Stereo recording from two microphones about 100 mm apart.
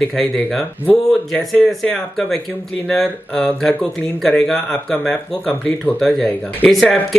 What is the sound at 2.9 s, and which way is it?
Speech, 5° left (ahead or behind).